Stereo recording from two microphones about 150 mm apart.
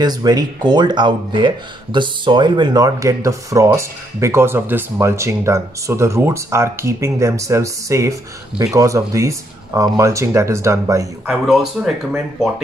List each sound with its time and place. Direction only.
0.0 s speech: 25° right (ahead or behind)
11.2 s speech: centre (ahead or behind)